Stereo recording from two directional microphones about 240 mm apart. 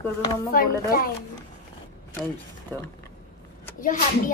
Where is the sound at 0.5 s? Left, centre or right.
Left.